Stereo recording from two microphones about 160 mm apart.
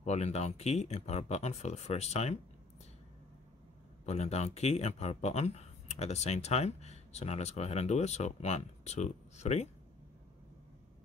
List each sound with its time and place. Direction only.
0.0 s speech: 45° left (ahead or behind)
4.0 s speech: 45° left (ahead or behind)